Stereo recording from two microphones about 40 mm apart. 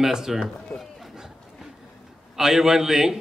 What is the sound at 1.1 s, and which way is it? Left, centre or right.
Chatter, centre.